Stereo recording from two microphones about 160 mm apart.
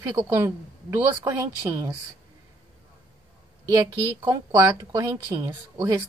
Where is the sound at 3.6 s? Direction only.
25° right (ahead or behind).